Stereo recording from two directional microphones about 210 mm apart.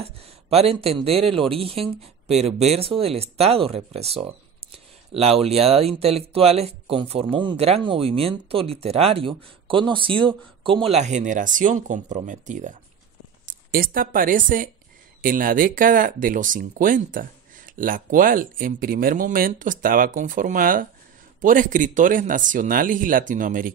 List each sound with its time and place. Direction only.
0.0 s speech: 30° right (ahead or behind)